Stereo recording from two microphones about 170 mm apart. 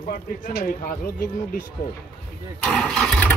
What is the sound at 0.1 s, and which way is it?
Speech, 65° left (ahead or behind).